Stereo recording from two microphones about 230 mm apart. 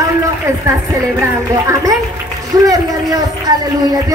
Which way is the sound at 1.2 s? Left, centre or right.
Centre.